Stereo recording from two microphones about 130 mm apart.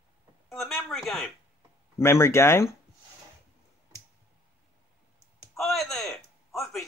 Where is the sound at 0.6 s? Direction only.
Centre (ahead or behind).